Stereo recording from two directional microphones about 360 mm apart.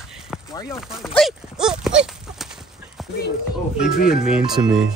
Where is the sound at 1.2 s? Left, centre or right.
Centre.